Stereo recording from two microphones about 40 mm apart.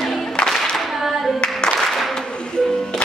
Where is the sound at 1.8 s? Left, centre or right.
Centre.